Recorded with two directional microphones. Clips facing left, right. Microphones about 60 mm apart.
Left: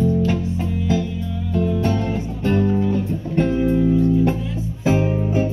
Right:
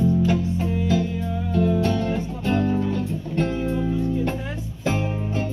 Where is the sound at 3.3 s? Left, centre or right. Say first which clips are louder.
Left 6 dB; centre.